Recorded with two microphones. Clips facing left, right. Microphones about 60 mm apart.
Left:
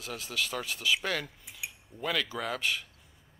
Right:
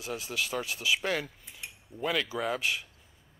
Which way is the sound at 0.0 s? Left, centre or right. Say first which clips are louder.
Right 1 dB; centre.